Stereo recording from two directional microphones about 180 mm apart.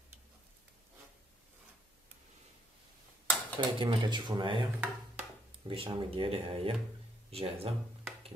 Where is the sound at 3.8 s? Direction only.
25° right (ahead or behind).